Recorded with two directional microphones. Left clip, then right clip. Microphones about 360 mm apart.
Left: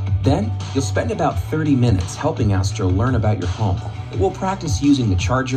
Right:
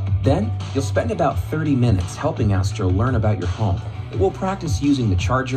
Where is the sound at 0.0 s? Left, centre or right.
Centre.